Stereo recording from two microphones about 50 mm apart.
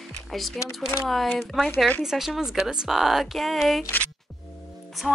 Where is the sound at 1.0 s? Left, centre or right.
Centre.